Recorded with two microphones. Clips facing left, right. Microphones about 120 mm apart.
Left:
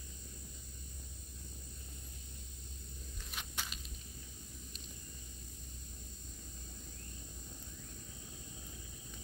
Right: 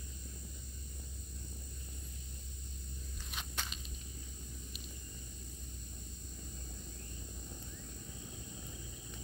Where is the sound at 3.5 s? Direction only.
10° left (ahead or behind).